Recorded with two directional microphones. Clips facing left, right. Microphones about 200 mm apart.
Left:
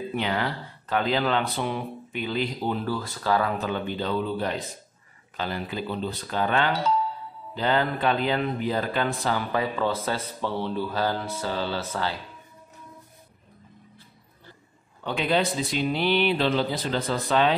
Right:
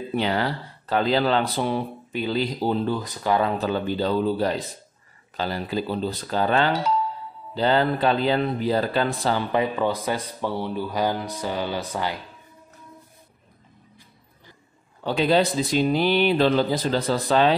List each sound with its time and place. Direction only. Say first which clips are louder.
0.1 s speech: right 5 dB; 35° right (ahead or behind)
3.6 s speech: right 5 dB; 35° right (ahead or behind); by 12.2 s 15° right (ahead or behind)
15.0 s speech: right 4 dB; 35° right (ahead or behind)